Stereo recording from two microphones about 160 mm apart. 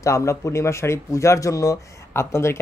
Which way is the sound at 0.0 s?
20° left (ahead or behind).